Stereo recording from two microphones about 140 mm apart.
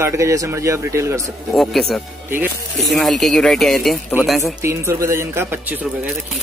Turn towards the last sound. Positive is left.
turn(degrees=-15)  # may be behind; listen again after turning